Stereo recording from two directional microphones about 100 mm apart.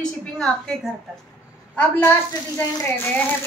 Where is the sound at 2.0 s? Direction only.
20° left (ahead or behind).